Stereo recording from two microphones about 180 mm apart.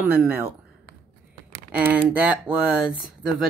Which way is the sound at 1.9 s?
5° right (ahead or behind).